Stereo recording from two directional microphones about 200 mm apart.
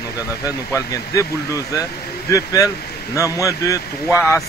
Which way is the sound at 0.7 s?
15° left (ahead or behind).